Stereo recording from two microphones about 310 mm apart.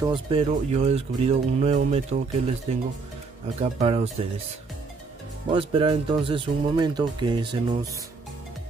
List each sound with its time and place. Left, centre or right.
0.0 s speech: centre
3.8 s speech: centre
5.5 s speech: centre